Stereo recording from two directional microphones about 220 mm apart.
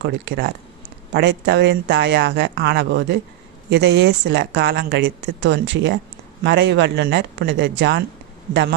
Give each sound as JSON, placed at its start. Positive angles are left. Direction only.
{"t": 0.0, "sound": "speech", "side_deg": -55}